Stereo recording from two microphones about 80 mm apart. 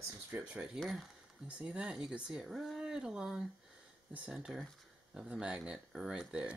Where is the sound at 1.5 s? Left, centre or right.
Centre.